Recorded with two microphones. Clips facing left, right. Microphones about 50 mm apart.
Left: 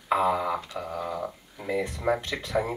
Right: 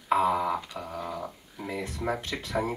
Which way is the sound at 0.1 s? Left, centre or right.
Centre.